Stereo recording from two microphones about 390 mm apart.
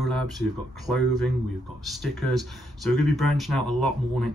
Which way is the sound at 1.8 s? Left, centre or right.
Centre.